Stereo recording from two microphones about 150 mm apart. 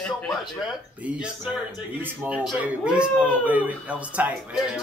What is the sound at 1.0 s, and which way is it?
Speech, 10° right (ahead or behind).